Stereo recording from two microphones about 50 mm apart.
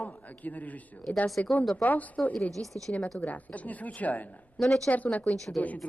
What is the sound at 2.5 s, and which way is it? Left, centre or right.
Speech, centre.